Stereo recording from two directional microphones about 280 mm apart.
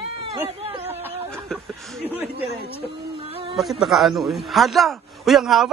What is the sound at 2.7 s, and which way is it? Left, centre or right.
Female singing, centre.